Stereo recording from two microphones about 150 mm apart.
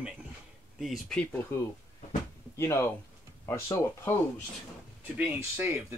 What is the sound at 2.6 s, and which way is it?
Speech, 15° left (ahead or behind).